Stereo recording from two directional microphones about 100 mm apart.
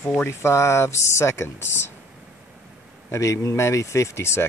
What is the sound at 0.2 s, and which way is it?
Speech, 25° left (ahead or behind).